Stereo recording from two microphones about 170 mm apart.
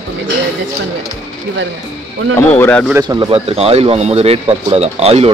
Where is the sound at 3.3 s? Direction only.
35° right (ahead or behind).